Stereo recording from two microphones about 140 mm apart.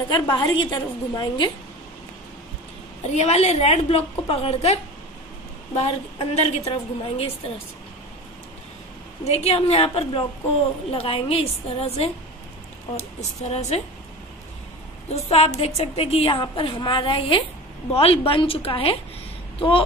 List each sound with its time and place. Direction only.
0.1 s a woman's voice: 30° left (ahead or behind)
3.0 s a woman's voice: 50° left (ahead or behind)
5.8 s a woman's voice: 45° left (ahead or behind)
9.2 s a woman's voice: 50° left (ahead or behind)
13.2 s a woman's voice: 55° left (ahead or behind)
15.1 s a woman's voice: 45° left (ahead or behind)